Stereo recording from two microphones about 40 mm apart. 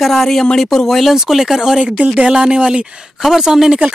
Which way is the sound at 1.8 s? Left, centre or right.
Right.